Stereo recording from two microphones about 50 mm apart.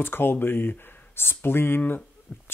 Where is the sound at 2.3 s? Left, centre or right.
Centre.